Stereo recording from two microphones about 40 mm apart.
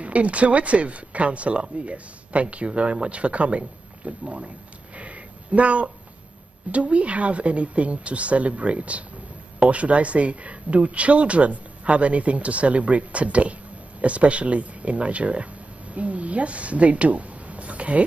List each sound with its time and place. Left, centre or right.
0.0 s speech: right
4.9 s a sound: right
6.7 s speech: right